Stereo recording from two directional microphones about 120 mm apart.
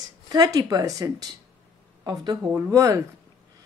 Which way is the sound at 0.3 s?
30° right (ahead or behind).